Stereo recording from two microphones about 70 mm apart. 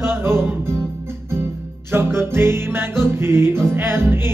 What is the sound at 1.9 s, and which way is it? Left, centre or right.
Music, right.